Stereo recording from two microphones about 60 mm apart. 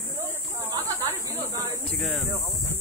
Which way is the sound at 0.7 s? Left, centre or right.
Right.